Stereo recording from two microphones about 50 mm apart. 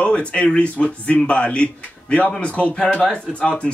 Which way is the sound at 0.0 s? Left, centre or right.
Left.